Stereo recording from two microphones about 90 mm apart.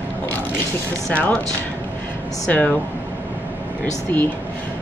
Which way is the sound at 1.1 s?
15° left (ahead or behind).